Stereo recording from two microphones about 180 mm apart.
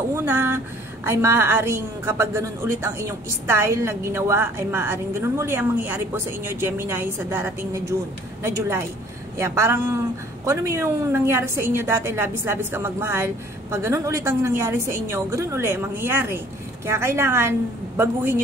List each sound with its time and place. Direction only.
0.1 s a woman's voice: 15° right (ahead or behind)